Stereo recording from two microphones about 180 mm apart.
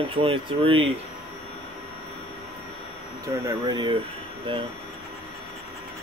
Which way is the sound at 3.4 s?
20° right (ahead or behind).